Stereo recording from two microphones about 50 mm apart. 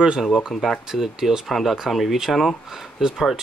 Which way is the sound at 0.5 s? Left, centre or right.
Centre.